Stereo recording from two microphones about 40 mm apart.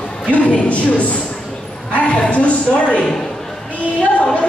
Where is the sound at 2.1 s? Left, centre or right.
Left.